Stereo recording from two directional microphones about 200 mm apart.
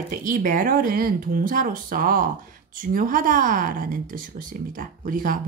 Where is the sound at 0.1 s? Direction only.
45° right (ahead or behind).